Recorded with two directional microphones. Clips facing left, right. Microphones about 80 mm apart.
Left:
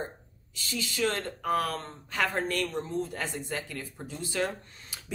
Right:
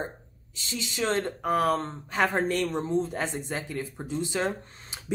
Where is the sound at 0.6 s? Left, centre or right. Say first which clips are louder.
Even; right.